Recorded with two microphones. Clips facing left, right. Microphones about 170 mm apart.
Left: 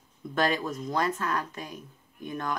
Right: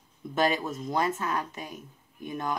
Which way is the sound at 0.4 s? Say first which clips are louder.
Right 1 dB; 20° right (ahead or behind).